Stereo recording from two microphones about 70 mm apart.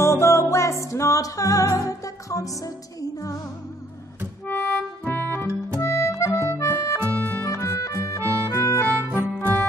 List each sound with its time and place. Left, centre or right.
0.0 s music: left
4.5 s accordion: left
5.8 s harmonica: left
7.2 s music: left
7.4 s music: left
8.2 s music: right
8.5 s music: left
8.9 s music: right